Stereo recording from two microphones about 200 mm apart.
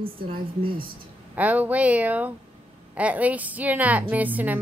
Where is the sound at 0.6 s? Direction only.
25° right (ahead or behind).